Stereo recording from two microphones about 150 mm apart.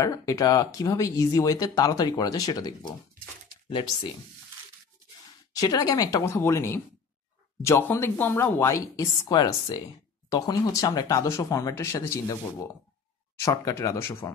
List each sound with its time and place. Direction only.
0.0 s speech: 20° left (ahead or behind)
5.6 s speech: 25° left (ahead or behind)
13.4 s speech: 20° left (ahead or behind)